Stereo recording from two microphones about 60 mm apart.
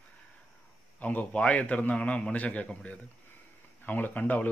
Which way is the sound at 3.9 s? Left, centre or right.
Left.